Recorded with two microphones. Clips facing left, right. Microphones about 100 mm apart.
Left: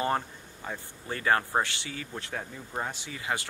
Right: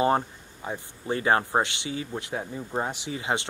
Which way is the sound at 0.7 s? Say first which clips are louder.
Right 6 dB; 20° right (ahead or behind).